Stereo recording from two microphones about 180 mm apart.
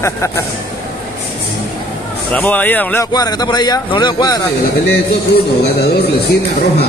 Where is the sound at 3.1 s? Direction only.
20° left (ahead or behind).